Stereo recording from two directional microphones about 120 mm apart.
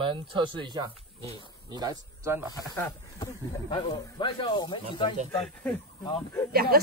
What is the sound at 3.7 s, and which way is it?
Speech, 40° left (ahead or behind).